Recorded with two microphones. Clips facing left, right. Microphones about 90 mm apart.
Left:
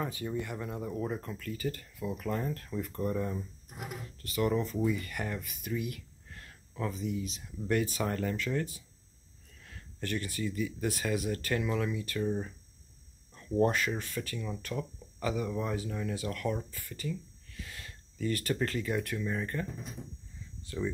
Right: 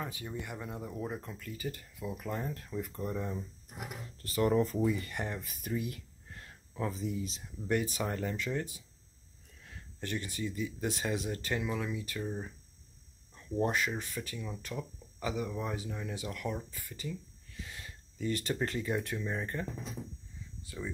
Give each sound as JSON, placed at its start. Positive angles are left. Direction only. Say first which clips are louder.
{"t": 0.4, "sound": "speech", "louder": "left 4 dB", "side_deg": -15}
{"t": 4.2, "sound": "speech", "louder": "right 2 dB", "side_deg": -35}
{"t": 5.5, "sound": "a sound", "louder": "left 1 dB", "side_deg": -35}
{"t": 7.0, "sound": "speech", "louder": "left 1 dB", "side_deg": -35}
{"t": 7.6, "sound": "speech", "louder": "left 2 dB", "side_deg": -15}
{"t": 13.6, "sound": "speech", "louder": "left 3 dB", "side_deg": -15}
{"t": 20.6, "sound": "speech", "louder": "left 7 dB", "side_deg": -5}